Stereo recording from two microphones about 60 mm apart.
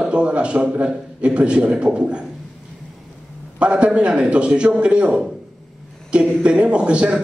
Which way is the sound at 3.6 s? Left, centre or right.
Centre.